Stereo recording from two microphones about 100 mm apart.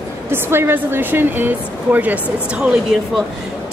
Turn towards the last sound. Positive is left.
turn(degrees=-5)  # may be behind; listen again after turning